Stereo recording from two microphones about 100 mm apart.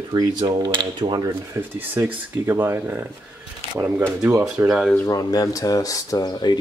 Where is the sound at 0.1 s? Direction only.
45° right (ahead or behind).